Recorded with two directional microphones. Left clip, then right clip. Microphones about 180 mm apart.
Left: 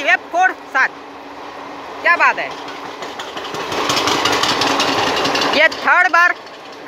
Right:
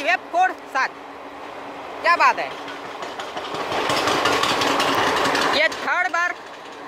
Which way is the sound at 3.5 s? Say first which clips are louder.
Left 3 dB; 50° left (ahead or behind).